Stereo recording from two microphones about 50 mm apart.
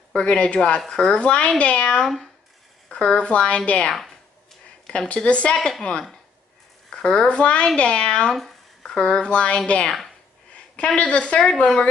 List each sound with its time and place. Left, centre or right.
0.1 s a woman's voice: left
8.4 s a sound: centre
8.9 s a woman's voice: centre
11.0 s a woman's voice: left